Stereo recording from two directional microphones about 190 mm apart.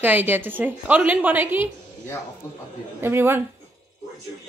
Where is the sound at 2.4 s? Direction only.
15° left (ahead or behind).